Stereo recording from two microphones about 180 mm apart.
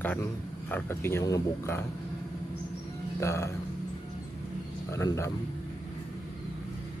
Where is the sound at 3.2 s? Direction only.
15° left (ahead or behind).